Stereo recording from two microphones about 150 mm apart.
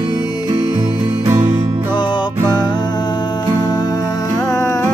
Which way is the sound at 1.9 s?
30° left (ahead or behind).